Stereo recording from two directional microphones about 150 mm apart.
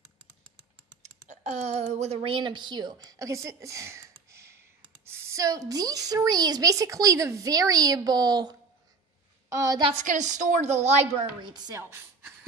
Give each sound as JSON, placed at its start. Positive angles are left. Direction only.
{"t": 1.3, "sound": "a woman's voice", "side_deg": -50}
{"t": 9.8, "sound": "a woman's voice", "side_deg": -40}
{"t": 10.0, "sound": "a woman's voice", "side_deg": -55}
{"t": 11.4, "sound": "a woman's voice", "side_deg": -25}